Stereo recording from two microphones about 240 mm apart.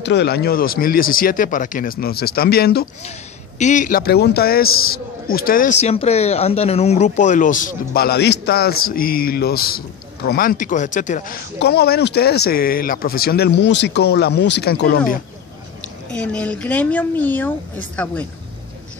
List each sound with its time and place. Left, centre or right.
0.0 s a man's voice: left
16.1 s speech: centre